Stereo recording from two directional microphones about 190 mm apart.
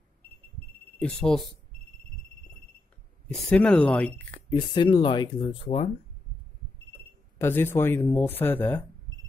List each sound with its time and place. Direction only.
1.0 s speech: 5° left (ahead or behind)
3.3 s speech: 5° left (ahead or behind)
4.5 s speech: 25° left (ahead or behind)
7.3 s speech: 10° left (ahead or behind)